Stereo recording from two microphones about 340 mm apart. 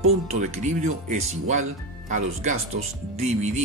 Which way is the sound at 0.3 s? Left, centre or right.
Right.